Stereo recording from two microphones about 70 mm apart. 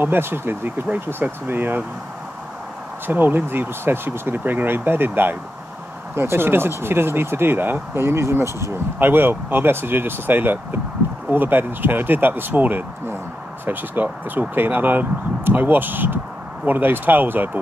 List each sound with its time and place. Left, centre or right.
0.0 s speech: right
3.1 s speech: right
9.0 s speech: right